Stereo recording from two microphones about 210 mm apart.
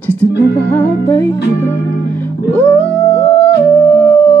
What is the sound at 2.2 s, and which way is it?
Music, 10° left (ahead or behind).